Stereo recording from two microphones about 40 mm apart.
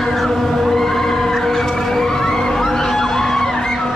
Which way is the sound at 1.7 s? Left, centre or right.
Centre.